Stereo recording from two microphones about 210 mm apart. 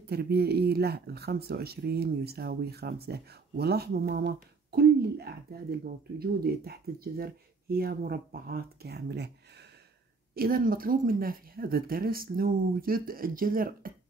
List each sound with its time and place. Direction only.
0.0 s speech: 50° right (ahead or behind)
10.3 s speech: 45° right (ahead or behind)